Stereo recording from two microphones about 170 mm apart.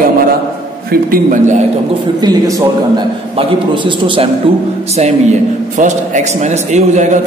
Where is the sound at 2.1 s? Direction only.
20° right (ahead or behind).